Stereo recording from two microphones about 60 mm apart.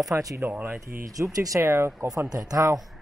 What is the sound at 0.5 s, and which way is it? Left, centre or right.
Speech, right.